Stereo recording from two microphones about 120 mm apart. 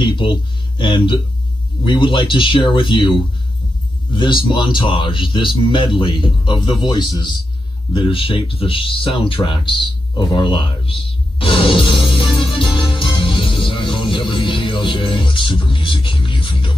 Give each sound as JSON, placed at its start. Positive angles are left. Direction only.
{"t": 0.0, "sound": "a man's voice", "side_deg": 40}
{"t": 7.9, "sound": "music", "side_deg": 45}